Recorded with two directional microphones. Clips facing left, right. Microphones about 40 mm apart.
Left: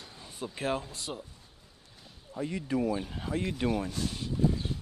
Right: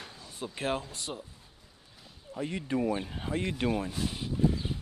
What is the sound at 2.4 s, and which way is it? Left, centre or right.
Speech, right.